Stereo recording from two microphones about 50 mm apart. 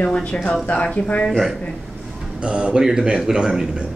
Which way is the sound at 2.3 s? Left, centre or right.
Right.